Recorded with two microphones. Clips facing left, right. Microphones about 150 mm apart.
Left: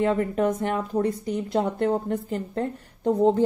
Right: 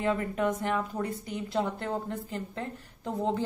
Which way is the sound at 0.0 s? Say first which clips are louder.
Left 6 dB; 35° left (ahead or behind).